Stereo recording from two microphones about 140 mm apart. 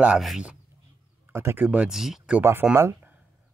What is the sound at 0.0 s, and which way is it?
Speech, 5° right (ahead or behind).